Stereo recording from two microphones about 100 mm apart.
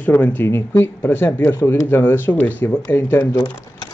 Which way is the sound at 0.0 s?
20° left (ahead or behind).